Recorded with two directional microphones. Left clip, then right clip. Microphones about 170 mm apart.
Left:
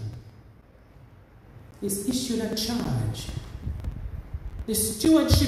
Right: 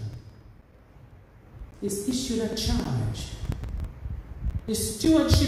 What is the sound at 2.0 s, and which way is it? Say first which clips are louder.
Speech: left 1 dB; 25° left (ahead or behind).